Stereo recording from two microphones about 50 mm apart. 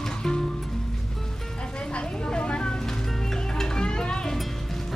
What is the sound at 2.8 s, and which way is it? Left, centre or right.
Music, centre.